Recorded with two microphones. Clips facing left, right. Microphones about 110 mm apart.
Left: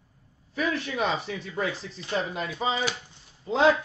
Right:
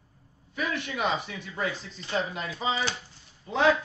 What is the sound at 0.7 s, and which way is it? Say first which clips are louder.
Speech: right 1 dB; 35° left (ahead or behind).